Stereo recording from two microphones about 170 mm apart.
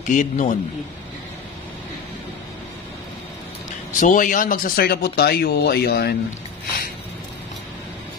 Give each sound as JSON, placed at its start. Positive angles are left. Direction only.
{"t": 0.0, "sound": "a man's voice", "side_deg": 50}
{"t": 4.0, "sound": "speech", "side_deg": 50}